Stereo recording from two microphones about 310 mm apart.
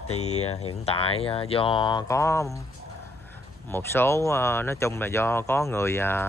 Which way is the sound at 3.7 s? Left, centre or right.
Centre.